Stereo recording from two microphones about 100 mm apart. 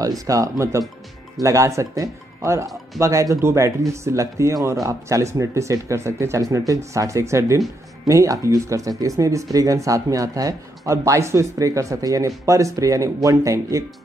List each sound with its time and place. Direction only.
0.3 s speech: 30° right (ahead or behind)